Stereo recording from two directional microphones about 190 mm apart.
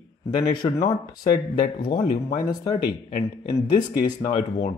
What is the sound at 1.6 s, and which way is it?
Speech, 50° left (ahead or behind).